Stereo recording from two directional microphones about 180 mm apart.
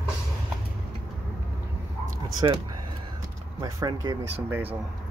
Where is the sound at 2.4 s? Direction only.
25° right (ahead or behind).